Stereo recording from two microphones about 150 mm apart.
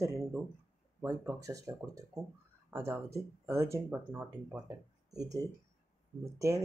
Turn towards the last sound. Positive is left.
turn(degrees=-20)  # may be behind; listen again after turning